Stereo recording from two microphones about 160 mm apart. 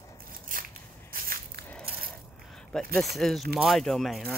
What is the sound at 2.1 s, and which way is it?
Coin, 5° left (ahead or behind).